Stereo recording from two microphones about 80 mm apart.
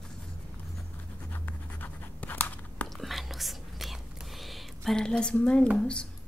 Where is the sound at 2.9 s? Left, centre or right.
Centre.